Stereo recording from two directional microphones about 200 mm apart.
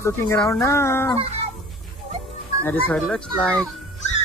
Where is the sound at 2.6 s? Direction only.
5° left (ahead or behind).